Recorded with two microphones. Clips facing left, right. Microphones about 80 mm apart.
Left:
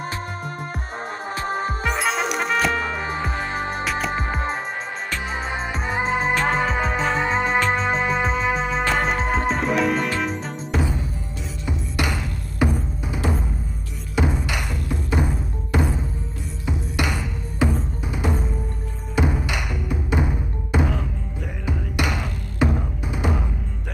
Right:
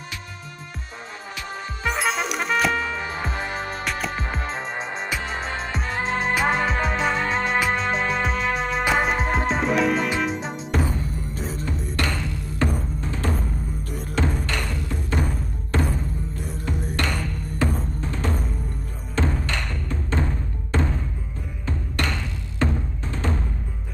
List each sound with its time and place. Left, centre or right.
1.4 s music: left
1.9 s music: centre
3.8 s music: centre
4.1 s music: centre
5.5 s music: centre
6.3 s music: centre
12.0 s music: centre